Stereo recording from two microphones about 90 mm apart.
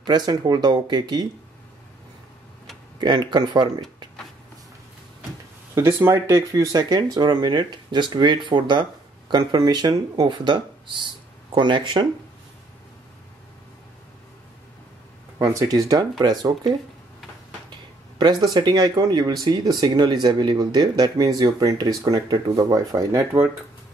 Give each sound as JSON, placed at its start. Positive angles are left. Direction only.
{"t": 0.0, "sound": "speech", "side_deg": -50}
{"t": 3.0, "sound": "speech", "side_deg": -60}
{"t": 5.8, "sound": "speech", "side_deg": -25}
{"t": 15.3, "sound": "speech", "side_deg": -40}